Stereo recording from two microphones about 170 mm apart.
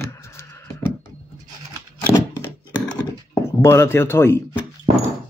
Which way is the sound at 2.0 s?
10° left (ahead or behind).